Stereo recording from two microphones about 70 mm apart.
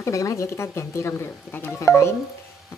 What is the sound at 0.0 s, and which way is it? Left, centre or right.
Speech, left.